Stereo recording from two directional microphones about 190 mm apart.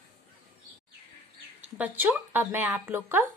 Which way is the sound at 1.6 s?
10° right (ahead or behind).